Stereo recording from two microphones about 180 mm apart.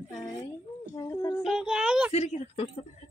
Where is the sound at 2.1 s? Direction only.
35° left (ahead or behind).